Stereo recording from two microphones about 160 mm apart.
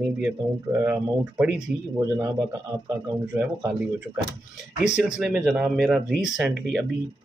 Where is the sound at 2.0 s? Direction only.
20° right (ahead or behind).